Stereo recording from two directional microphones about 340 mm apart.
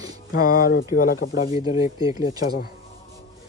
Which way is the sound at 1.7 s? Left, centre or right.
Centre.